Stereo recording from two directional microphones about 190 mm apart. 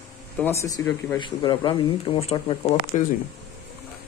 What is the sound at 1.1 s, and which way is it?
Speech, 25° left (ahead or behind).